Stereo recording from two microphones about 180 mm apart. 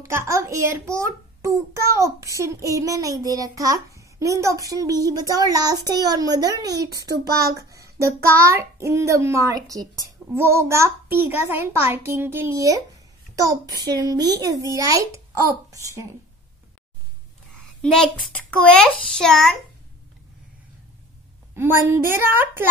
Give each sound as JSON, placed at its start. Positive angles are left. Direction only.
{"t": 0.0, "sound": "a child's voice", "side_deg": -15}
{"t": 17.6, "sound": "a child's voice", "side_deg": 5}
{"t": 21.5, "sound": "a child's voice", "side_deg": -15}